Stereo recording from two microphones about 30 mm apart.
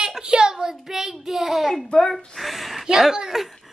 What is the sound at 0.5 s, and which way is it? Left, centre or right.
A child's voice, centre.